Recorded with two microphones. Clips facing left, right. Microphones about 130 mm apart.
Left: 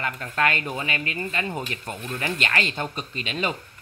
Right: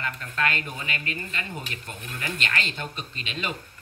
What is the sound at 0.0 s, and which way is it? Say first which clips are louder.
Speech: left 4 dB; 40° left (ahead or behind).